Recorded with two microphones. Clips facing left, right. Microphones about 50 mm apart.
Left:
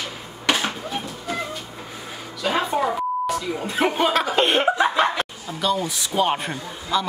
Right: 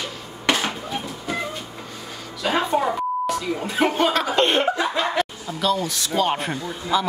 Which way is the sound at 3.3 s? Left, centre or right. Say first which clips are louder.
Right 1 dB; centre.